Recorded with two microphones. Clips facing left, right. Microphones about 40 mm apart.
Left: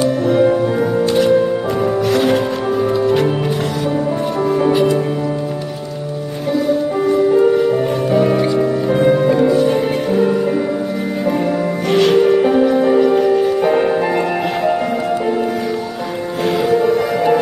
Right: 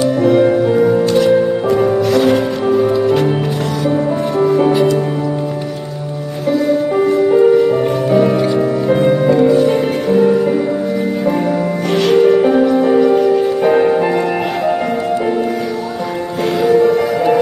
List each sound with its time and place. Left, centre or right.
0.2 s music: centre
4.4 s music: centre
7.3 s music: centre
11.9 s music: centre
16.6 s music: centre